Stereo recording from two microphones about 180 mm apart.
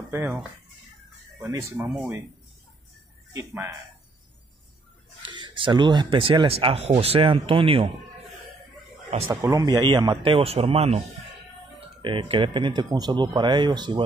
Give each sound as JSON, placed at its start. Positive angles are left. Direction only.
{"t": 1.4, "sound": "speech", "side_deg": -15}
{"t": 3.3, "sound": "speech", "side_deg": -15}
{"t": 5.2, "sound": "speech", "side_deg": -25}
{"t": 9.3, "sound": "speech", "side_deg": -15}
{"t": 12.0, "sound": "speech", "side_deg": -30}